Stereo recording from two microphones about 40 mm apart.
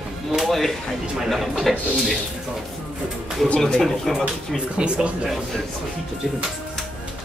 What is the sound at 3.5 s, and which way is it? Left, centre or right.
Speech, centre.